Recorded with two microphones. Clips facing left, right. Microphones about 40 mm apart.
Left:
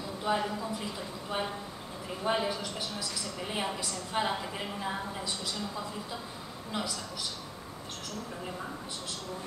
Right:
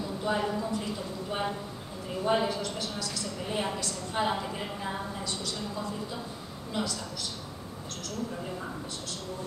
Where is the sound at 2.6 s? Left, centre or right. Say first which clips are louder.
Right 3 dB; centre.